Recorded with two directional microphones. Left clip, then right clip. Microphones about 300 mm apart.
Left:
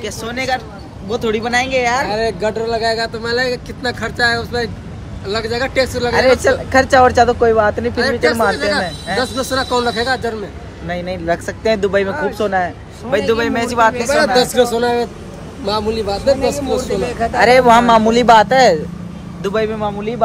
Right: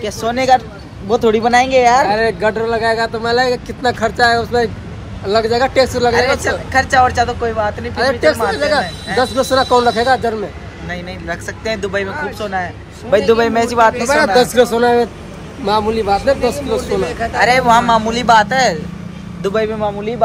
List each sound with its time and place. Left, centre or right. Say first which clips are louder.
0.0 s speech: right 5 dB; centre
2.0 s speech: right 3 dB; centre
6.7 s speech: left 1 dB; left
7.9 s speech: right 2 dB; centre
10.9 s speech: left 5 dB; left
13.3 s speech: right 4 dB; centre
14.1 s a man's voice: right 2 dB; centre
17.0 s speech: left 3 dB; left
19.4 s a man's voice: right 1 dB; centre